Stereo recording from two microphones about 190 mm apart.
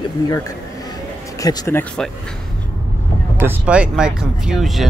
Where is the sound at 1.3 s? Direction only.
20° left (ahead or behind).